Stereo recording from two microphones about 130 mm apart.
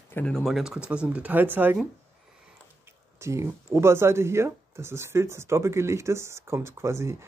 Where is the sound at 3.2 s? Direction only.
20° right (ahead or behind).